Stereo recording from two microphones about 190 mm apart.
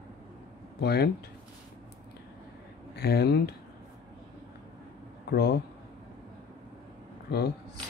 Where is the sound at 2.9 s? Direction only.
55° left (ahead or behind).